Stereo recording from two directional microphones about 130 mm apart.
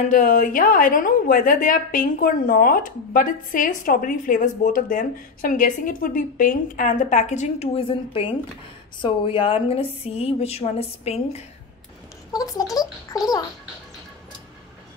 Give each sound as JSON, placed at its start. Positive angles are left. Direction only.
{"t": 0.0, "sound": "a woman's voice", "side_deg": 90}
{"t": 12.3, "sound": "speech", "side_deg": 30}